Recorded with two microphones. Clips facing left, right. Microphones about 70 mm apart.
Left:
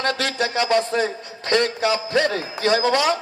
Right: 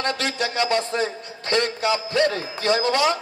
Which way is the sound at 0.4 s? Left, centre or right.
Left.